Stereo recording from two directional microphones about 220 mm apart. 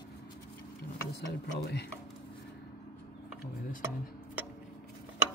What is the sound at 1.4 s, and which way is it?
Speech, 50° left (ahead or behind).